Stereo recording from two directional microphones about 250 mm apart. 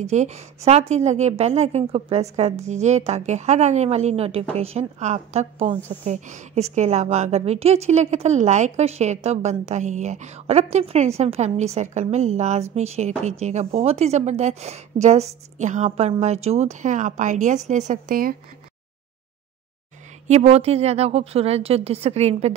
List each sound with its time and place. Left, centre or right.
0.0 s a woman's voice: right
20.2 s a woman's voice: right